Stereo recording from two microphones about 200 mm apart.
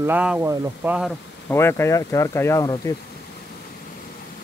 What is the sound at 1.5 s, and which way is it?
Speech, 10° left (ahead or behind).